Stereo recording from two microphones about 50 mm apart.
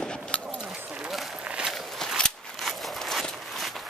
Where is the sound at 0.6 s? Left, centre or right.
Centre.